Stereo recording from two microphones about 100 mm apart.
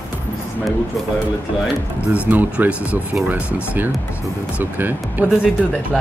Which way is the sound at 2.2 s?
15° right (ahead or behind).